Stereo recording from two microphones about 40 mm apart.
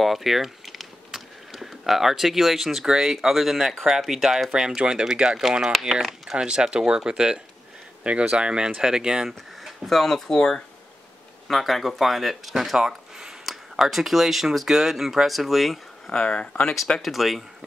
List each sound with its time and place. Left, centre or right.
0.0 s speech: centre
4.5 s speech: centre
5.7 s speech: centre
6.3 s speech: right
9.7 s speech: centre
11.4 s speech: centre
16.1 s speech: left
17.0 s speech: centre